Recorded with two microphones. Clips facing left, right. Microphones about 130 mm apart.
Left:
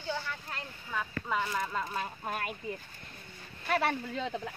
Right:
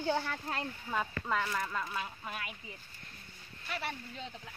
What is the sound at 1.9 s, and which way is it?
Speech, 45° left (ahead or behind).